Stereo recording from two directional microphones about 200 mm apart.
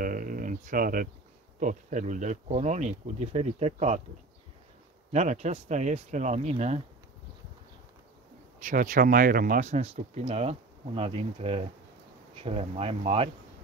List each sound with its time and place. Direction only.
0.0 s a sound: 45° right (ahead or behind)
1.6 s speech: 40° right (ahead or behind)
5.1 s speech: 35° right (ahead or behind)
8.5 s speech: 40° right (ahead or behind)